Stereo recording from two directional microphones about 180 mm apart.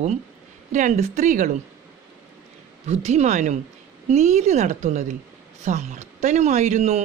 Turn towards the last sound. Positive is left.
turn(degrees=-40)  # may be behind; listen again after turning